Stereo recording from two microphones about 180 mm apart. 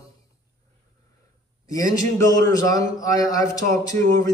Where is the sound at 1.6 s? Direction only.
20° left (ahead or behind).